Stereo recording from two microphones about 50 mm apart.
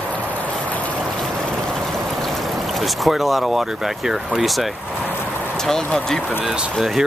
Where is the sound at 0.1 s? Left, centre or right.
Left.